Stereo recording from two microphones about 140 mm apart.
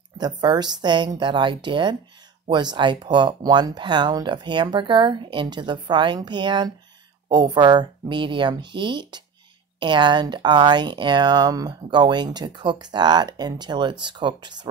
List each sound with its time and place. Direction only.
0.2 s speech: 30° right (ahead or behind)